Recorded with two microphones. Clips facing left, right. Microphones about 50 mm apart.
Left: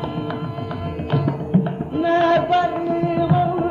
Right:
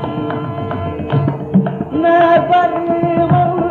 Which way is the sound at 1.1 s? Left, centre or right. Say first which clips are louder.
Right 4 dB; right.